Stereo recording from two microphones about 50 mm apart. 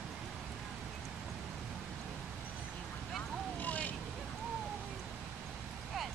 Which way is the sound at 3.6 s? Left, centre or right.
Left.